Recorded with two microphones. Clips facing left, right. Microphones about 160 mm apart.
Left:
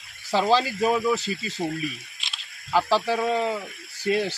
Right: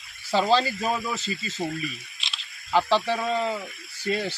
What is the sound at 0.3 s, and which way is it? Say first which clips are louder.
Speech: even; 10° left (ahead or behind).